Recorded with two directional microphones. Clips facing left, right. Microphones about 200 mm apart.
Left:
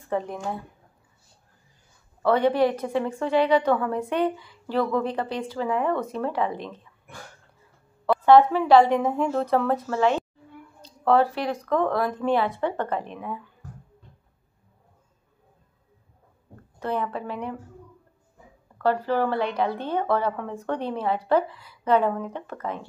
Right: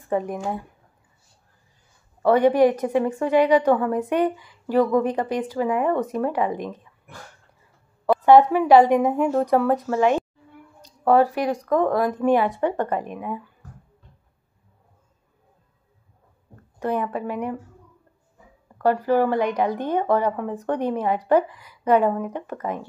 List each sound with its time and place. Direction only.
0.1 s a woman's voice: 10° right (ahead or behind)
2.2 s a woman's voice: 15° right (ahead or behind)
8.1 s a woman's voice: 15° right (ahead or behind)
16.8 s a woman's voice: 15° right (ahead or behind)
18.8 s a woman's voice: 10° right (ahead or behind)